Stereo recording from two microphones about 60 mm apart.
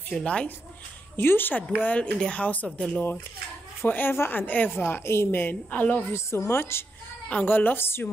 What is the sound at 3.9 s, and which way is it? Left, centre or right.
A woman's voice, left.